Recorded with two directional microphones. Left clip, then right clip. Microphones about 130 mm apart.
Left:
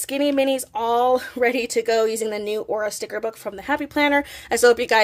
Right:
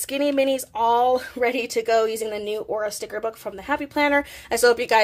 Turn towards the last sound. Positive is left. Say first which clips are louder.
# left 2 dB
turn(degrees=25)  # may be behind; listen again after turning